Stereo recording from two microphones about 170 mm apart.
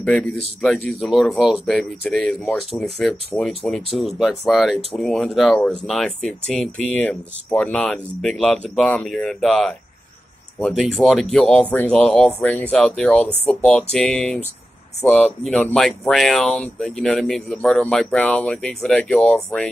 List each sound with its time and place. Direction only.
0.0 s speech: 5° left (ahead or behind)
15.5 s speech: 5° left (ahead or behind)